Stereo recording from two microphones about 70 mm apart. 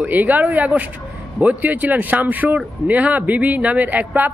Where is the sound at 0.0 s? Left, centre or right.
Right.